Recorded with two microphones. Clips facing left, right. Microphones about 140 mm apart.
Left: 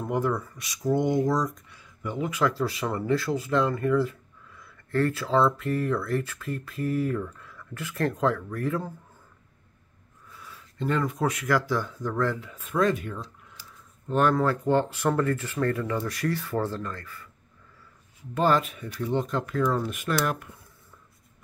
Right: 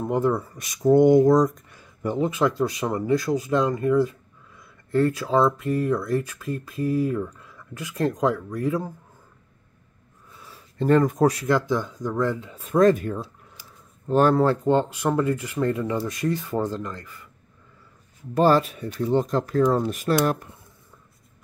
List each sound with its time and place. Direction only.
0.0 s speech: 25° right (ahead or behind)
0.9 s speech: 50° right (ahead or behind)
2.1 s speech: 25° right (ahead or behind)
10.3 s a sound: 25° right (ahead or behind)
10.8 s speech: 40° right (ahead or behind)
11.4 s speech: 20° right (ahead or behind)
12.6 s speech: 40° right (ahead or behind)
13.6 s a sound: 10° right (ahead or behind)
14.0 s speech: 35° right (ahead or behind)
18.3 s speech: 35° right (ahead or behind)